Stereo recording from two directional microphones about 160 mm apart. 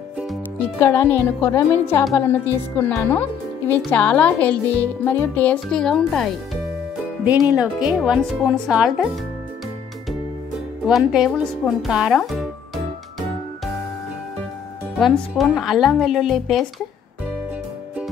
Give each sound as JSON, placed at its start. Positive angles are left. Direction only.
{"t": 0.7, "sound": "speech", "side_deg": 15}
{"t": 10.9, "sound": "speech", "side_deg": 0}
{"t": 15.0, "sound": "speech", "side_deg": 0}